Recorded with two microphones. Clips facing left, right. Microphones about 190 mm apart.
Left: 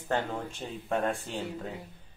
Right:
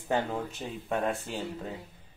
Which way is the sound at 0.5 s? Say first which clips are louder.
Even; centre (ahead or behind).